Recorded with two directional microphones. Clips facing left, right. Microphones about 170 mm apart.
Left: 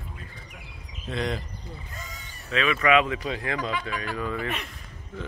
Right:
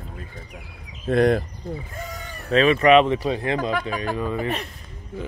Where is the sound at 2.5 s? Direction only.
35° right (ahead or behind).